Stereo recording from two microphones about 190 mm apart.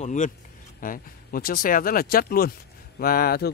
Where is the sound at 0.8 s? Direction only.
50° left (ahead or behind).